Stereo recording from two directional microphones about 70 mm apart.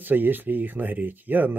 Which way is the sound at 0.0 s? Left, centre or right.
Right.